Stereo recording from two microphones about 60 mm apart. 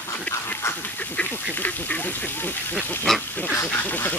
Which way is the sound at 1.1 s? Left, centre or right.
Left.